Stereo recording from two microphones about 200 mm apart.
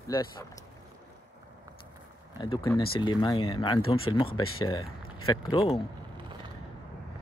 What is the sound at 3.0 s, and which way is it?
Speech, 20° left (ahead or behind).